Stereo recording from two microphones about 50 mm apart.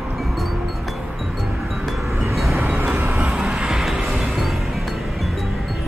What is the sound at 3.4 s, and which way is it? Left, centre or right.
Music, centre.